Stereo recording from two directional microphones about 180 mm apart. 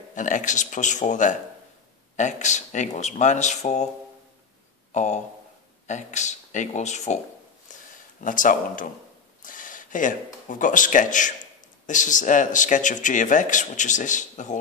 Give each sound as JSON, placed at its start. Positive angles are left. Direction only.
{"t": 0.1, "sound": "speech", "side_deg": 45}
{"t": 4.9, "sound": "speech", "side_deg": 40}
{"t": 7.7, "sound": "a sound", "side_deg": 45}
{"t": 8.2, "sound": "speech", "side_deg": 50}